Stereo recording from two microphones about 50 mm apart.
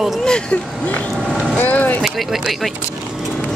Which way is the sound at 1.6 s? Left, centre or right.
Left.